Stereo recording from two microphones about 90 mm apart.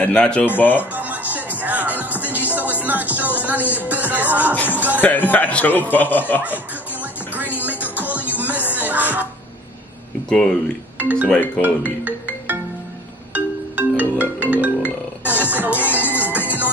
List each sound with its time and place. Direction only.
0.0 s a man's voice: 15° left (ahead or behind)
0.9 s music: 20° right (ahead or behind)
5.0 s a man's voice: 20° left (ahead or behind)
6.4 s music: 20° right (ahead or behind)
10.3 s speech: 5° left (ahead or behind)
11.0 s speech: 20° right (ahead or behind)
12.0 s music: 20° right (ahead or behind)